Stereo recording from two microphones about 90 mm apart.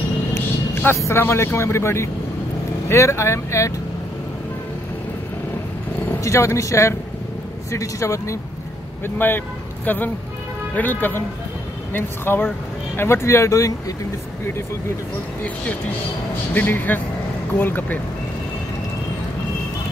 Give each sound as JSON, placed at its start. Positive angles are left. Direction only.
{"t": 0.9, "sound": "speech", "side_deg": 30}
{"t": 6.2, "sound": "speech", "side_deg": 35}
{"t": 9.0, "sound": "speech", "side_deg": 25}
{"t": 16.5, "sound": "speech", "side_deg": 20}